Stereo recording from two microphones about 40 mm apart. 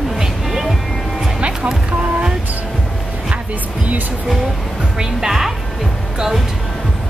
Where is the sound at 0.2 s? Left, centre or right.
Centre.